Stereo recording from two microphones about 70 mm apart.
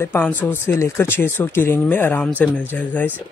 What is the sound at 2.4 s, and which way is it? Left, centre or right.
Speech, centre.